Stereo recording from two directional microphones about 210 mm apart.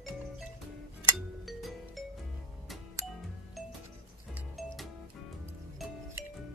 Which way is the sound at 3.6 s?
Centre (ahead or behind).